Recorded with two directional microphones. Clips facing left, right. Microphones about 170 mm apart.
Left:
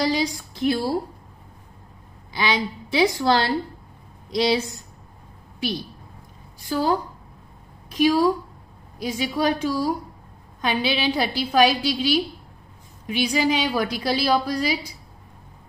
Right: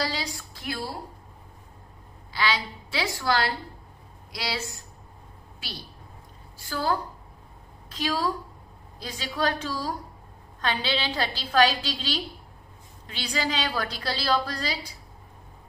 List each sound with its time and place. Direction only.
0.0 s speech: 15° left (ahead or behind)
2.3 s a woman's voice: 15° left (ahead or behind)